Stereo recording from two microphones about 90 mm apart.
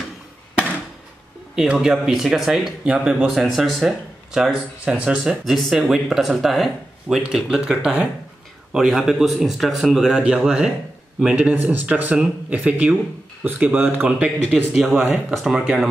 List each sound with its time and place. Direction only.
1.5 s speech: 5° right (ahead or behind)
3.3 s speech: centre (ahead or behind)
5.2 s speech: centre (ahead or behind); by 14.1 s 20° right (ahead or behind)
14.7 s speech: 5° right (ahead or behind)